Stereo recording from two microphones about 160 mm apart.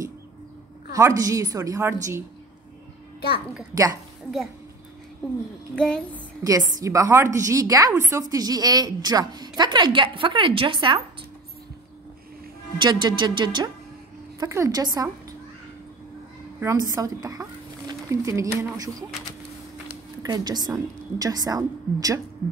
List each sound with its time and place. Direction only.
0.9 s speech: 20° right (ahead or behind)
3.7 s speech: 20° right (ahead or behind)
5.8 s a sound: 5° left (ahead or behind)
6.8 s speech: 20° right (ahead or behind)
12.7 s speech: 30° right (ahead or behind)
16.6 s speech: 25° right (ahead or behind)
20.2 s speech: 25° right (ahead or behind)